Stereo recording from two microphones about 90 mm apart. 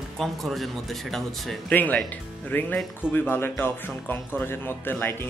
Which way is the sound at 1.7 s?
15° left (ahead or behind).